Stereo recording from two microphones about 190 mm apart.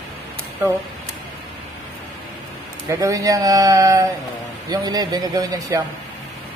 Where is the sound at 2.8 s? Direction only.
15° right (ahead or behind).